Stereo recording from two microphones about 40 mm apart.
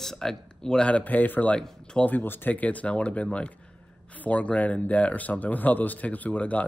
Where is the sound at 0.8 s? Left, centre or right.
Left.